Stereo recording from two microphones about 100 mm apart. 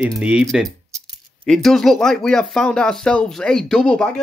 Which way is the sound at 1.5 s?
5° left (ahead or behind).